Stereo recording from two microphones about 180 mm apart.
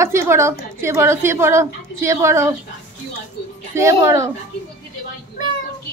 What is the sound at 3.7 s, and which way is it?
Speech, 15° right (ahead or behind).